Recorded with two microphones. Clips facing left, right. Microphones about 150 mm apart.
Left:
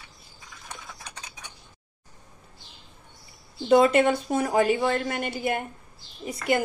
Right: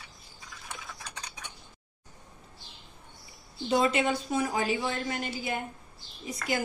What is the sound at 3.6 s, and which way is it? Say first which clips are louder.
A woman's voice: left 7 dB; 55° left (ahead or behind).